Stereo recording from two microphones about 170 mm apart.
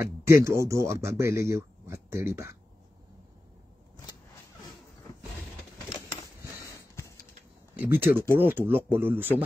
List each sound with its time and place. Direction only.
0.0 s speech: 15° right (ahead or behind)
5.9 s a sound: 20° left (ahead or behind)
7.7 s speech: 10° right (ahead or behind)